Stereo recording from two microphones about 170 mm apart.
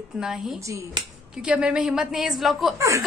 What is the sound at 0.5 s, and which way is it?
Speech, 20° right (ahead or behind).